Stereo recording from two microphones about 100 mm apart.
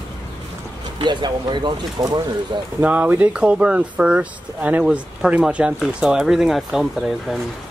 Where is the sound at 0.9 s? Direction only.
50° right (ahead or behind).